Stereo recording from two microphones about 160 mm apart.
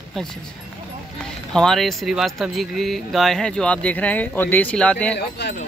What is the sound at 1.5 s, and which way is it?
Speech, 5° left (ahead or behind).